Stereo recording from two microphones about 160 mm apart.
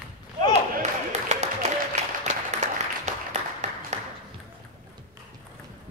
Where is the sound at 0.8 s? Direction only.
45° right (ahead or behind).